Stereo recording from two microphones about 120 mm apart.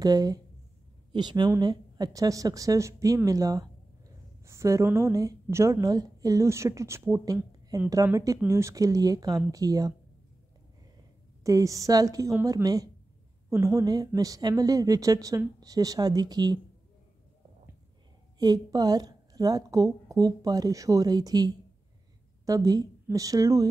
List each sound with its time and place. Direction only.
0.0 s a woman's voice: 30° right (ahead or behind)
11.4 s a woman's voice: 25° right (ahead or behind)
18.4 s a woman's voice: 35° right (ahead or behind)